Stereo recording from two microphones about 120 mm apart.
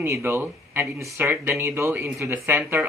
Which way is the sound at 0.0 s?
20° right (ahead or behind).